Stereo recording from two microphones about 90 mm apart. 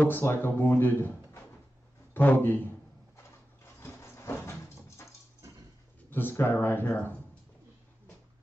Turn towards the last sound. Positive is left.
turn(degrees=20)  # may be behind; listen again after turning